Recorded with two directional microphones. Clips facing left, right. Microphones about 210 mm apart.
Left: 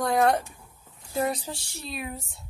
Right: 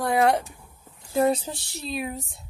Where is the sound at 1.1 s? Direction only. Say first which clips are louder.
Right 6 dB; 25° right (ahead or behind).